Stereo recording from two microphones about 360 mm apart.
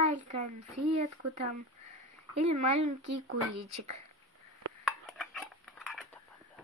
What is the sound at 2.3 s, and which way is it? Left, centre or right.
Speech, right.